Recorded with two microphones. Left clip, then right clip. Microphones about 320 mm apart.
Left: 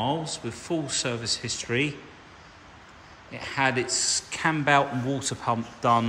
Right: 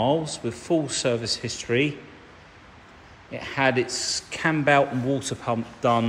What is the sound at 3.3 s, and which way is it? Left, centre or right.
Speech, centre.